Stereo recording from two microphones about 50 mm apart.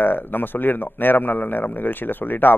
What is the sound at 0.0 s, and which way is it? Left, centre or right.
A man's voice, left.